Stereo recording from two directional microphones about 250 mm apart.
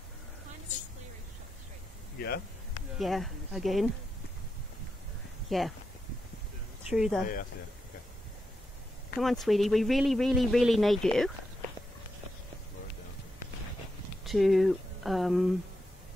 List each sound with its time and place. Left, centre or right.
2.1 s speech: left
3.0 s speech: centre
5.5 s speech: centre
6.9 s speech: centre
9.2 s speech: centre
14.2 s speech: centre